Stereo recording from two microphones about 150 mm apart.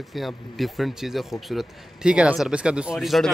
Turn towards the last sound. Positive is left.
turn(degrees=0)  # may be behind; listen again after turning